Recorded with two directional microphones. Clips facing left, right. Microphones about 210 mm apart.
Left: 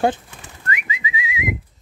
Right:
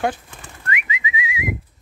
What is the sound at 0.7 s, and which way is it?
Bird, 30° left (ahead or behind).